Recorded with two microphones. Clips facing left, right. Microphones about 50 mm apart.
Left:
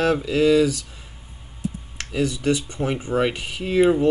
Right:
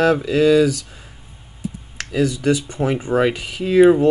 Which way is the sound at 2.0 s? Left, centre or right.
Right.